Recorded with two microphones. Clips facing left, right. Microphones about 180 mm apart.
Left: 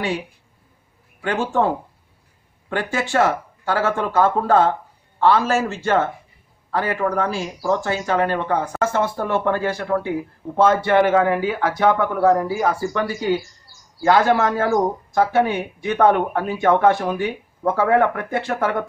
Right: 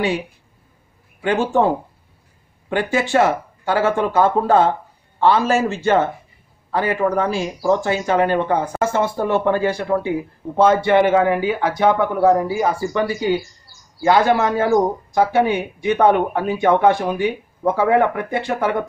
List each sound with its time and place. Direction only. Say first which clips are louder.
1.5 s speech: right 3 dB; 15° right (ahead or behind)
8.9 s speech: right 4 dB; 5° right (ahead or behind)